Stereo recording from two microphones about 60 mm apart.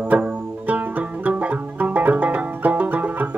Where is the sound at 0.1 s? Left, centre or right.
Right.